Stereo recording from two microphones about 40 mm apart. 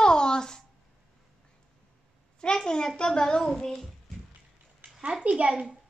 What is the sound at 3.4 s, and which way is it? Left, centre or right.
Child singing, centre.